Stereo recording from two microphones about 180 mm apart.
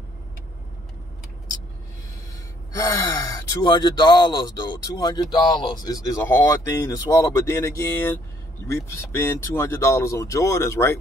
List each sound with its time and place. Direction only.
2.7 s speech: 20° left (ahead or behind)